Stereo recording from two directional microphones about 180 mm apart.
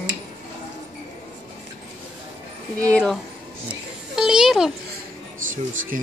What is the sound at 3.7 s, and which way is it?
Music, 5° right (ahead or behind).